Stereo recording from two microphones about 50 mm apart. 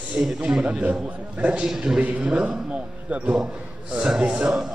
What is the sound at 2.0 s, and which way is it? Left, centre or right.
A man's voice, right.